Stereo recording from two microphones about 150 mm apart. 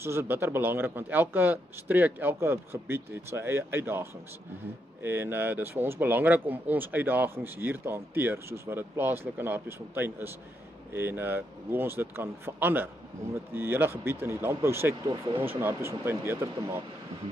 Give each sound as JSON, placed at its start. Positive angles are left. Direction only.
{"t": 0.0, "sound": "speech", "side_deg": -15}
{"t": 15.0, "sound": "speech", "side_deg": -30}
{"t": 15.4, "sound": "speech", "side_deg": -15}